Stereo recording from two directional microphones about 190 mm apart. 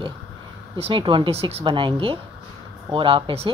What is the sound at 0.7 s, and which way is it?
Speech, 30° right (ahead or behind).